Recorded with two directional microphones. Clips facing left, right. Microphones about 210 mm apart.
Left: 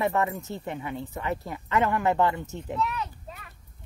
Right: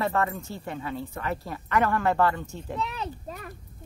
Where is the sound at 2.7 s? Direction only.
30° right (ahead or behind).